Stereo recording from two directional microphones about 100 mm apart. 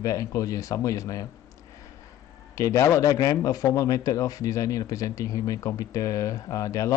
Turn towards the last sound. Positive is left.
turn(degrees=35)  # may be behind; listen again after turning